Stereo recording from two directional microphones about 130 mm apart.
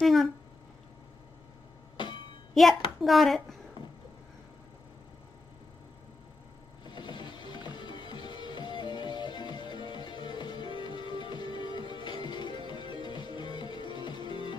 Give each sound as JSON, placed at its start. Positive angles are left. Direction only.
{"t": 0.0, "sound": "speech", "side_deg": 0}
{"t": 2.0, "sound": "a sound", "side_deg": 35}
{"t": 3.0, "sound": "speech", "side_deg": 0}
{"t": 6.9, "sound": "music", "side_deg": 35}